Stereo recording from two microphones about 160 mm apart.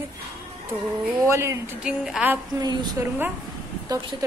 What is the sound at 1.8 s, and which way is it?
Speech, 5° right (ahead or behind).